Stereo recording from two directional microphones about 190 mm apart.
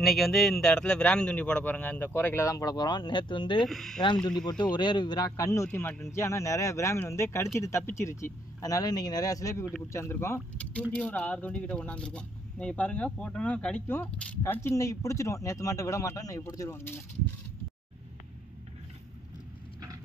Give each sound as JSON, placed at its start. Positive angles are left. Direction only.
{"t": 0.0, "sound": "speech", "side_deg": 0}
{"t": 3.6, "sound": "speech", "side_deg": 0}
{"t": 4.0, "sound": "a man's voice", "side_deg": 25}